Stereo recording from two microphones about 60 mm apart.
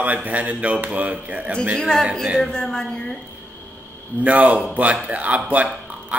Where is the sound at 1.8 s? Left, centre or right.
Centre.